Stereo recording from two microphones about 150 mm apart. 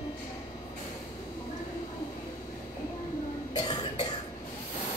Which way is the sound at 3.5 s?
35° left (ahead or behind).